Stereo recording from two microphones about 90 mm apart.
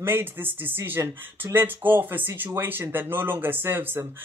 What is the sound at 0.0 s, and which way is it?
Speech, 25° right (ahead or behind).